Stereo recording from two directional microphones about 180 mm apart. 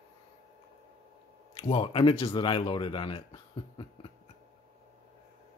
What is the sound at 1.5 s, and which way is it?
Speech, 30° left (ahead or behind).